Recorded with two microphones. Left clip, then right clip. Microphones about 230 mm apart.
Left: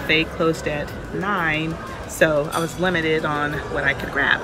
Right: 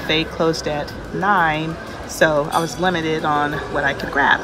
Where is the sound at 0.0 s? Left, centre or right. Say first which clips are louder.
Right 1 dB; centre.